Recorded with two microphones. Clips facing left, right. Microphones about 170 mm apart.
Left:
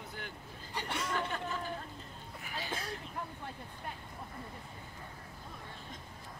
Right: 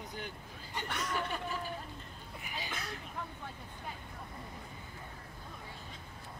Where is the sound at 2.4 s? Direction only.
15° right (ahead or behind).